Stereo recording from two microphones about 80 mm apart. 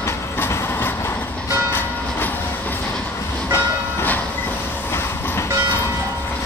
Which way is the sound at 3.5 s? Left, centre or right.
Left.